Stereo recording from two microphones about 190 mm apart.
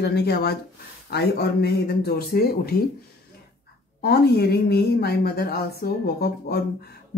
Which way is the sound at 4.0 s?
55° left (ahead or behind).